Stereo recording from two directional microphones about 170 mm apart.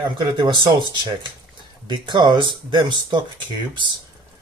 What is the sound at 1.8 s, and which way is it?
Speech, 30° right (ahead or behind).